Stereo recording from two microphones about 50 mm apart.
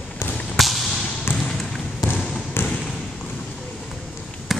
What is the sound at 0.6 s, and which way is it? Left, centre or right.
Whip, centre.